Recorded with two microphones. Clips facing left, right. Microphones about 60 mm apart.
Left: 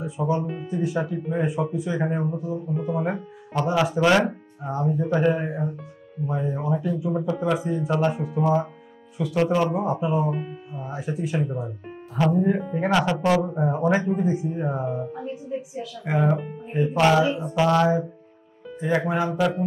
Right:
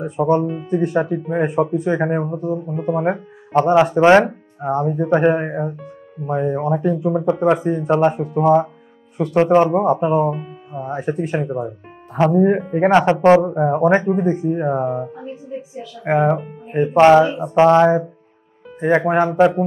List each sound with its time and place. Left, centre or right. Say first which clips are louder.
0.0 s speech: right 8 dB; right
2.3 s speech: right 7 dB; right
2.6 s speech: right 6 dB; right
9.4 s speech: right 8 dB; right
9.8 s speech: right 8 dB; right
10.3 s speech: right 3 dB; centre
10.9 s speech: right 7 dB; right
16.9 s speech: right 9 dB; right